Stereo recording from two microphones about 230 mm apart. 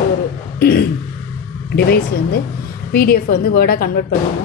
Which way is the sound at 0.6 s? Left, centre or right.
Left.